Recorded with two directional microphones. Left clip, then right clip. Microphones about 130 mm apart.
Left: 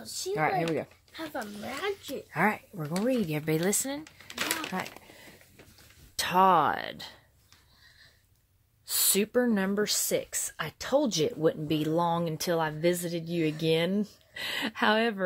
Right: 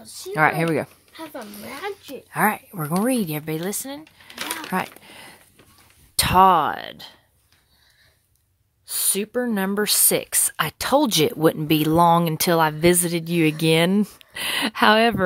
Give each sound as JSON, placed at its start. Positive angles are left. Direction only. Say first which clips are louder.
{"t": 0.0, "sound": "speech", "louder": "right 9 dB", "side_deg": -45}
{"t": 0.7, "sound": "speech", "louder": "right 8 dB", "side_deg": -70}
{"t": 2.3, "sound": "speech", "louder": "right 7 dB", "side_deg": -30}
{"t": 2.7, "sound": "speech", "louder": "right 7 dB", "side_deg": -50}
{"t": 3.4, "sound": "speech", "louder": "right 1 dB", "side_deg": -10}
{"t": 4.5, "sound": "a sound", "louder": "right 9 dB", "side_deg": -40}
{"t": 6.1, "sound": "speech", "louder": "right 8 dB", "side_deg": -35}
{"t": 6.5, "sound": "speech", "louder": "right 5 dB", "side_deg": -15}
{"t": 8.8, "sound": "speech", "louder": "right 1 dB", "side_deg": -10}
{"t": 9.5, "sound": "speech", "louder": "right 5 dB", "side_deg": -30}
{"t": 9.8, "sound": "speech", "louder": "right 7 dB", "side_deg": -60}
{"t": 14.3, "sound": "speech", "louder": "right 9 dB", "side_deg": -45}